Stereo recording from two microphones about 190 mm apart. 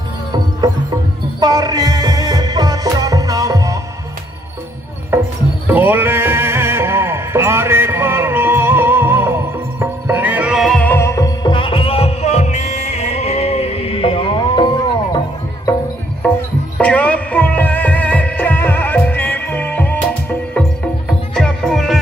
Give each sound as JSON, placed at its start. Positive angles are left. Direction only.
{"t": 1.4, "sound": "music", "side_deg": -20}
{"t": 5.1, "sound": "a sound", "side_deg": -15}
{"t": 5.7, "sound": "music", "side_deg": -10}
{"t": 16.7, "sound": "music", "side_deg": 5}